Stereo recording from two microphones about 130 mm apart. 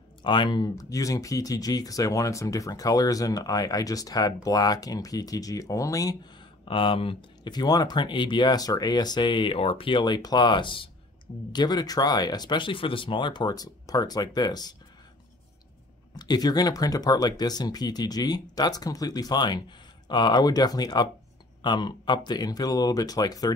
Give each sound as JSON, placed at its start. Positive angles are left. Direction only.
{"t": 0.2, "sound": "speech", "side_deg": 35}
{"t": 6.6, "sound": "speech", "side_deg": 40}
{"t": 16.2, "sound": "speech", "side_deg": 30}